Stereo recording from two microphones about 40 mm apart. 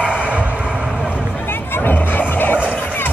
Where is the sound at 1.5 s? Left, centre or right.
Left.